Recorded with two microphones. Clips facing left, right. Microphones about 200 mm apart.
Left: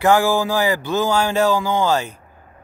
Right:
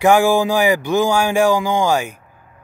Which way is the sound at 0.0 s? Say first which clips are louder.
Right 3 dB; 15° right (ahead or behind).